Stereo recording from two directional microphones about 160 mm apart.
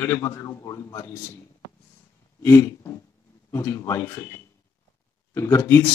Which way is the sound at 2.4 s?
15° left (ahead or behind).